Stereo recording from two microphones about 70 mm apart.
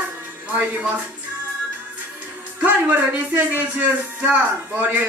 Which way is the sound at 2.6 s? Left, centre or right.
Right.